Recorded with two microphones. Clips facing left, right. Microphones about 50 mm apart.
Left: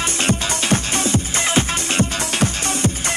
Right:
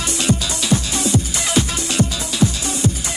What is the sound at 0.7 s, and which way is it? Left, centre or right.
Music, left.